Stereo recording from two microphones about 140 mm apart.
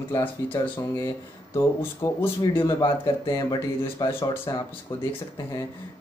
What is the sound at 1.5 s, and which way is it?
Speech, 20° left (ahead or behind).